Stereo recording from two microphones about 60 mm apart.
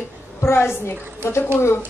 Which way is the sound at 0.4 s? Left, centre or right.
Left.